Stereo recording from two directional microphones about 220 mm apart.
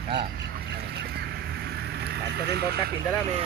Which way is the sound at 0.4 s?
50° right (ahead or behind).